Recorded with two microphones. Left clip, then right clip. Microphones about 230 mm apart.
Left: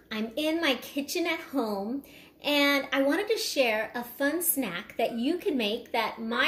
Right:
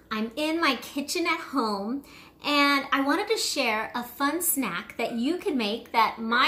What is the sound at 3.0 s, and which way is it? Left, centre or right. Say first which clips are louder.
Speech: right 2 dB; centre.